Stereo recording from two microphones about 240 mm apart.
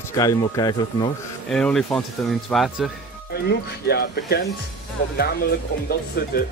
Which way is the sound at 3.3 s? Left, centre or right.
Left.